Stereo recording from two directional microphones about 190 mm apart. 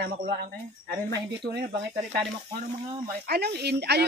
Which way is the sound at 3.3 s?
60° right (ahead or behind).